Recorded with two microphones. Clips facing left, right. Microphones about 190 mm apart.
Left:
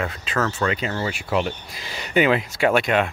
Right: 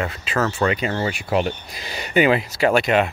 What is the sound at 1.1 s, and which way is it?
Speech, 20° right (ahead or behind).